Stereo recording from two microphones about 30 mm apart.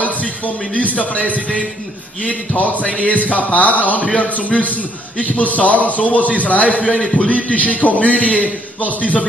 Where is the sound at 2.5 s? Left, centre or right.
Left.